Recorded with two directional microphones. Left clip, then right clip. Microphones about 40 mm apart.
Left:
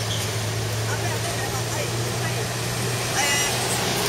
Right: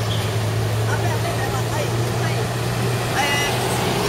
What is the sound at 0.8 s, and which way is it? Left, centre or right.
Vehicle, left.